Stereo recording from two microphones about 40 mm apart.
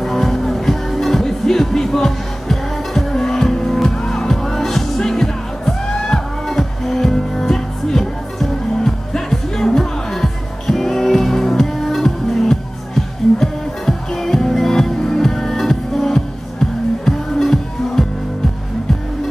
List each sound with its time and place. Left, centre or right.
0.0 s music: centre